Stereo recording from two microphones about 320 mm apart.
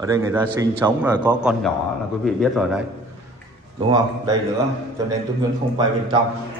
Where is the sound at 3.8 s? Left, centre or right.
Centre.